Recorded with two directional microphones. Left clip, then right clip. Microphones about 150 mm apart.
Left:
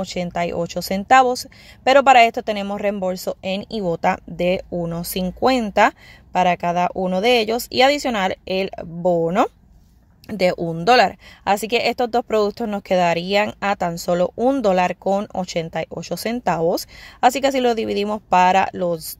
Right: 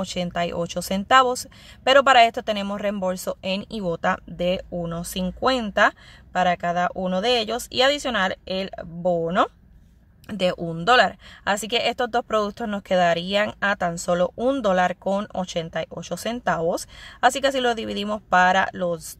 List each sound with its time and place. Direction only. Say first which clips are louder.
0.0 s speech: left 2 dB; 10° left (ahead or behind)